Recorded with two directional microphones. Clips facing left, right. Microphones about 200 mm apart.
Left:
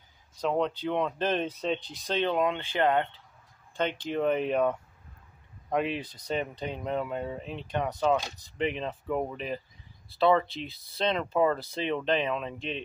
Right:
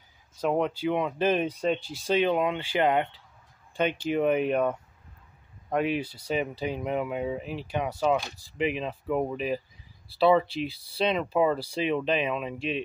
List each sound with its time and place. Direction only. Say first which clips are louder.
0.4 s speech: right 2 dB; 10° right (ahead or behind)